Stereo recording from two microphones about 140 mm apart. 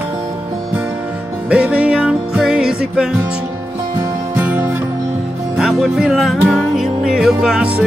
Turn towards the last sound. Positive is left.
turn(degrees=-5)  # may be behind; listen again after turning